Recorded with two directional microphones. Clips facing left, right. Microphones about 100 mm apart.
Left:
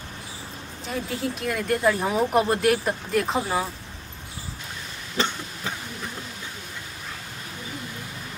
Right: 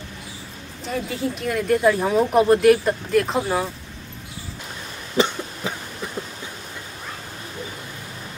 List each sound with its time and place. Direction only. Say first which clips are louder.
0.8 s speech: right 3 dB; centre (ahead or behind)
5.1 s cough: right 6 dB; 15° right (ahead or behind)